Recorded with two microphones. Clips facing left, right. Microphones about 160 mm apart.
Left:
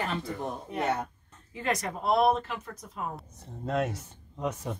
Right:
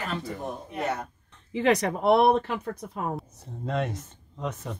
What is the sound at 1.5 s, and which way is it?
Speech, 75° right (ahead or behind).